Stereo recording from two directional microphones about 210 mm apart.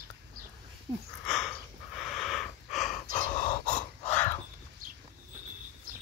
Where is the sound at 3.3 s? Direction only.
30° left (ahead or behind).